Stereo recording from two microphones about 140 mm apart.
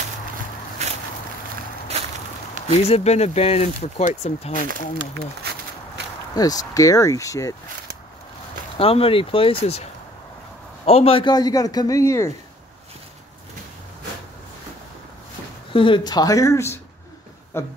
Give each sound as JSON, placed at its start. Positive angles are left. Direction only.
{"t": 0.8, "sound": "walk", "side_deg": -50}
{"t": 2.7, "sound": "speech", "side_deg": 50}
{"t": 6.3, "sound": "a man's voice", "side_deg": 25}
{"t": 8.7, "sound": "speech", "side_deg": 40}
{"t": 10.9, "sound": "a man's voice", "side_deg": 45}
{"t": 15.7, "sound": "a man's voice", "side_deg": 35}